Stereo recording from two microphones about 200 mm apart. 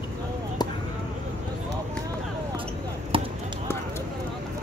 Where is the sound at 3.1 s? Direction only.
25° right (ahead or behind).